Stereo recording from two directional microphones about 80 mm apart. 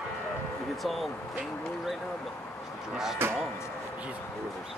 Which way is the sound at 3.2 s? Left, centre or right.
Right.